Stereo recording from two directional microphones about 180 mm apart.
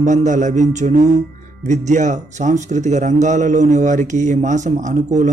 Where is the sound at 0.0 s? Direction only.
40° right (ahead or behind).